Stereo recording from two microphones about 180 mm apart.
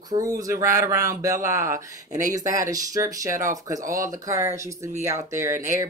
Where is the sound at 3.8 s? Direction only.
45° right (ahead or behind).